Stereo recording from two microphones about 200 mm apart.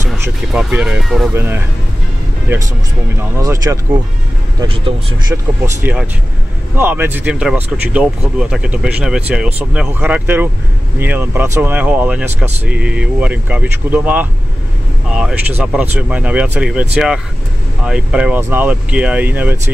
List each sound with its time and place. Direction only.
0.2 s speech: 5° right (ahead or behind)
5.3 s speech: 10° right (ahead or behind)